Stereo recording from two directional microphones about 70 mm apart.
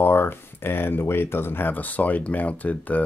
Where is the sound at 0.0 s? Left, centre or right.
Left.